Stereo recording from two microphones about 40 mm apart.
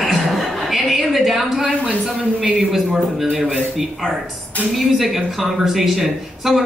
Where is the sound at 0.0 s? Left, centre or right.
Centre.